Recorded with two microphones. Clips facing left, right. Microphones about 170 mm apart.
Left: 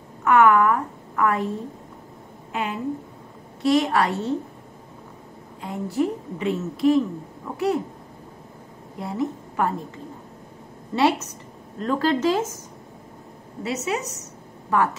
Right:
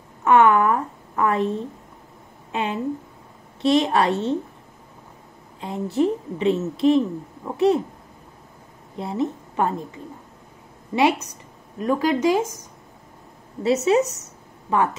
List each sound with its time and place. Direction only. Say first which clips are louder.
0.2 s a woman's voice: right 1 dB; 25° right (ahead or behind)
5.6 s a woman's voice: right 3 dB; 25° right (ahead or behind)
8.9 s a woman's voice: right 2 dB; 25° right (ahead or behind)
11.0 s speech: right 1 dB; 15° right (ahead or behind)
13.7 s a woman's voice: right 9 dB; 25° right (ahead or behind)